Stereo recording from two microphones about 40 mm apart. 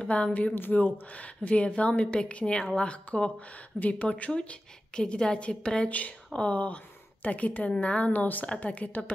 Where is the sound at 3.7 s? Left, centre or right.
Left.